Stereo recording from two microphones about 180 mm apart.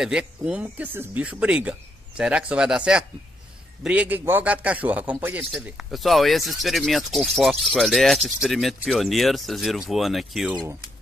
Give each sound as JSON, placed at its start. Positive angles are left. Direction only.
{"t": 0.0, "sound": "a man's voice", "side_deg": -5}
{"t": 10.5, "sound": "speech", "side_deg": -20}